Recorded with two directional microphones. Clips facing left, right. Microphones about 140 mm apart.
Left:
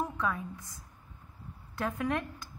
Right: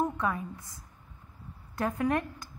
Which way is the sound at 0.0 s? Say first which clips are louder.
Right 3 dB; 20° right (ahead or behind).